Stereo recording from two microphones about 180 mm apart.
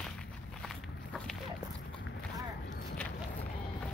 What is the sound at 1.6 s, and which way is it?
Walk, 20° right (ahead or behind).